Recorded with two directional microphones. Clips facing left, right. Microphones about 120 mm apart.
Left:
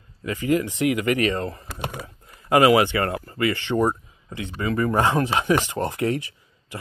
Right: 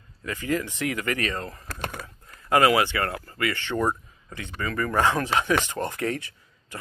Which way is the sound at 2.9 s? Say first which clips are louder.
Left 4 dB; 30° left (ahead or behind).